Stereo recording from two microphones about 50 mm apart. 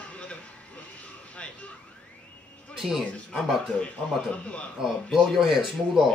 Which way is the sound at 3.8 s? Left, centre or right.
Left.